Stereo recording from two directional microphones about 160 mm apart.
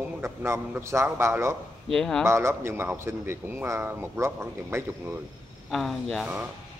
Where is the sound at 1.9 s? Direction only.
5° left (ahead or behind).